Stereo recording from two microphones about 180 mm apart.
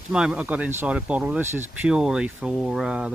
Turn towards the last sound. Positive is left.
turn(degrees=-5)  # may be behind; listen again after turning